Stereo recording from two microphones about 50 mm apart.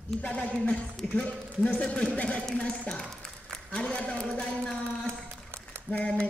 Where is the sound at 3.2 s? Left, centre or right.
Left.